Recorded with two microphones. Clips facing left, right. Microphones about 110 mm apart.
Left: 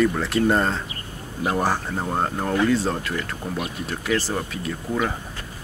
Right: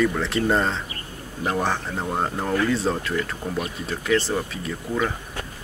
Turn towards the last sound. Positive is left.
turn(degrees=5)  # may be behind; listen again after turning